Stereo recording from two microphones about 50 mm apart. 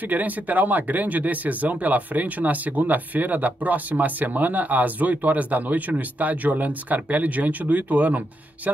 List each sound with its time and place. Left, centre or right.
0.1 s speech: right